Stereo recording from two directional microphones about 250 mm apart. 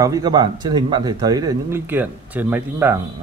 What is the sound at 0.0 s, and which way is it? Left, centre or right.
A man's voice, centre.